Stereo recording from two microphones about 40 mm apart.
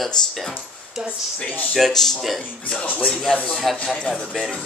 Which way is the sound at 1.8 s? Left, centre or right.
Centre.